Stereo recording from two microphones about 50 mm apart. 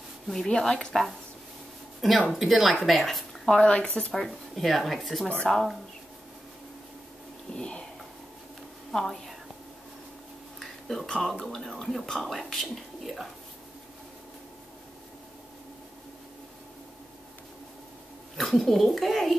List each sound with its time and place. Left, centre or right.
0.3 s a woman's voice: centre
2.0 s speech: centre
7.5 s speech: centre
8.9 s a woman's voice: centre
10.6 s a sound: centre
11.4 s speech: centre
18.4 s speech: centre